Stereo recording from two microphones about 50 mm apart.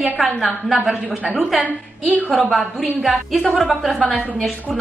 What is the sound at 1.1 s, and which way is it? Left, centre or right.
A woman's voice, right.